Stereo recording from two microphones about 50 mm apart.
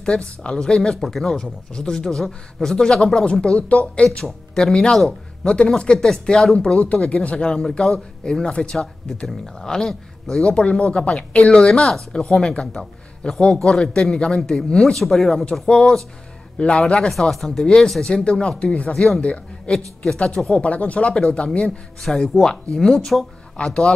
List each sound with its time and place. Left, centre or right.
0.0 s speech: centre
1.0 s a man's voice: centre; by 4.2 s left
4.2 s a man's voice: centre
6.7 s a man's voice: left
9.6 s a man's voice: centre
15.0 s a man's voice: centre
17.3 s speech: centre
17.6 s a man's voice: centre
20.5 s speech: left
22.0 s a man's voice: centre
23.5 s speech: centre